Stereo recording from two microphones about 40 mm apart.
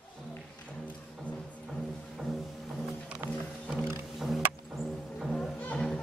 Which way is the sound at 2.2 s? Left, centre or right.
Centre.